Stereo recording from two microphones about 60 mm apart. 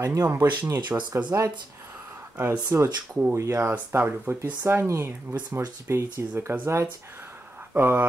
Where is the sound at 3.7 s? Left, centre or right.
Right.